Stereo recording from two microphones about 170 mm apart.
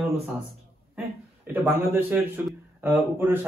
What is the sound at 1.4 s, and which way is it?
A man's voice, 10° right (ahead or behind).